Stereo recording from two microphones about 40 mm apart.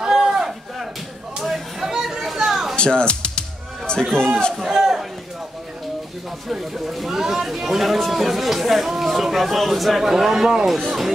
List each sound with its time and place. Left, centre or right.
0.0 s a sound: centre
2.7 s music: left
4.6 s a man's voice: centre
6.5 s speech: centre